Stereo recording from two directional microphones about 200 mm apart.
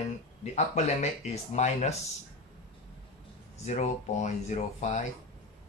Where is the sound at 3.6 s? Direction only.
35° left (ahead or behind).